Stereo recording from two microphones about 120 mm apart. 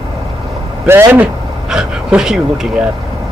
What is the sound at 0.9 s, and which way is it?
Speech, 15° right (ahead or behind).